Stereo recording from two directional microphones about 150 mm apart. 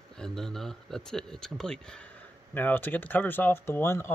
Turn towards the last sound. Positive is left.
turn(degrees=15)  # may be behind; listen again after turning